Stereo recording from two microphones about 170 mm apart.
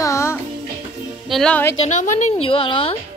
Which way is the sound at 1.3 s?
5° left (ahead or behind).